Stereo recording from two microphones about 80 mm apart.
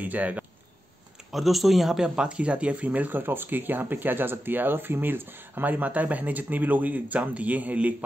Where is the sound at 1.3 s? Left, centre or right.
Centre.